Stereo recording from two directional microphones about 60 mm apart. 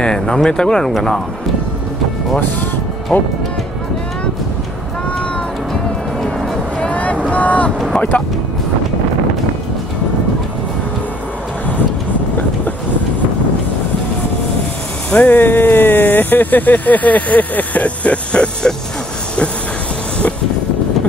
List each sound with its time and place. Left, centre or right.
0.0 s speech: centre
6.2 s music: centre
6.9 s vehicle: left
8.1 s speech: left
15.0 s speech: left